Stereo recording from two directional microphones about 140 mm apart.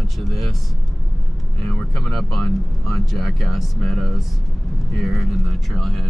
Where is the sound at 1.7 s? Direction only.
5° left (ahead or behind).